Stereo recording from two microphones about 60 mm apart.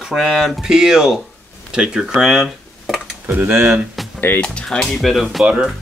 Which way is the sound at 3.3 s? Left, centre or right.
Right.